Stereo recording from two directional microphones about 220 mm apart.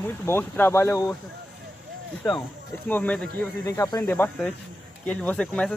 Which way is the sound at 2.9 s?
5° left (ahead or behind).